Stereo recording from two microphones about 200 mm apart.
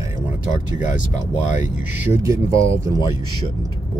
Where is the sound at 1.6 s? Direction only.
10° right (ahead or behind).